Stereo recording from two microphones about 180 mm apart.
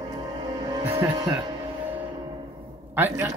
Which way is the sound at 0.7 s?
20° right (ahead or behind).